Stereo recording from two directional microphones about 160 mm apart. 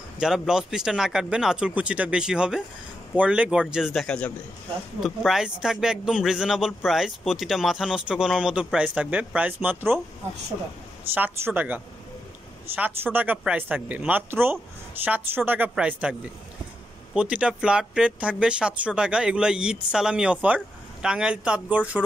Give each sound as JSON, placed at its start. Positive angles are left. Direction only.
{"t": 0.2, "sound": "speech", "side_deg": -5}
{"t": 11.1, "sound": "speech", "side_deg": -10}